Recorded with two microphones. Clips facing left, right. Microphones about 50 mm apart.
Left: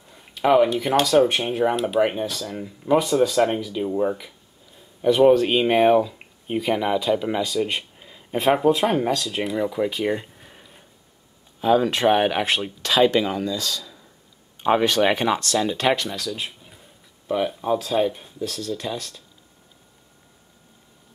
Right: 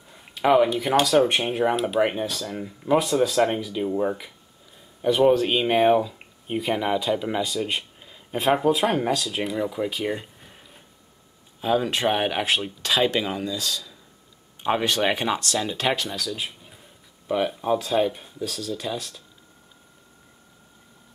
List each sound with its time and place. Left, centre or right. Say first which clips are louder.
0.1 s speech: left 1 dB; centre
5.3 s speech: left 3 dB; centre
9.8 s a sound: left 3 dB; centre
11.6 s speech: left 4 dB; centre